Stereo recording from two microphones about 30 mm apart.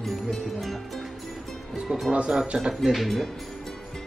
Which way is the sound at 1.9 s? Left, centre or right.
Centre.